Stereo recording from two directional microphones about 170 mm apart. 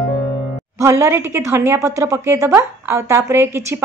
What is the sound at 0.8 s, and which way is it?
A woman's voice, 20° right (ahead or behind).